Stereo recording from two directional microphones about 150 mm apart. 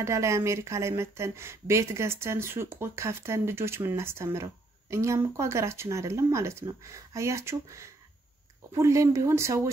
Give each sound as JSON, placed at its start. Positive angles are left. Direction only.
{"t": 0.0, "sound": "speech", "side_deg": -20}